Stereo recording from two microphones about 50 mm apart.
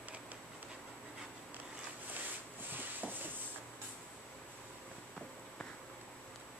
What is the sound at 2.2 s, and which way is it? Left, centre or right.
Rub, right.